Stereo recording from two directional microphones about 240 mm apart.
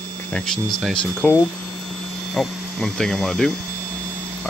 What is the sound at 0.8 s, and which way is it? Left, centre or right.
Speech, centre.